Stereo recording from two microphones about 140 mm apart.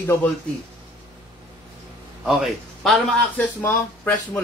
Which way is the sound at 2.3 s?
Centre (ahead or behind).